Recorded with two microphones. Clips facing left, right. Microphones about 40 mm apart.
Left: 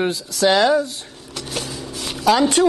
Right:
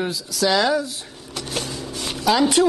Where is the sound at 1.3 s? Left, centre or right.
Centre.